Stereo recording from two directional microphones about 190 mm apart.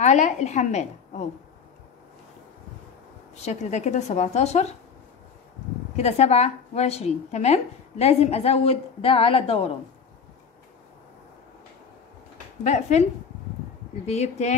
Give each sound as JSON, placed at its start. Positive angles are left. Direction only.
{"t": 0.0, "sound": "a woman's voice", "side_deg": 40}
{"t": 3.3, "sound": "a woman's voice", "side_deg": 35}
{"t": 5.9, "sound": "a woman's voice", "side_deg": 35}
{"t": 12.6, "sound": "a woman's voice", "side_deg": 35}
{"t": 14.0, "sound": "a woman's voice", "side_deg": 35}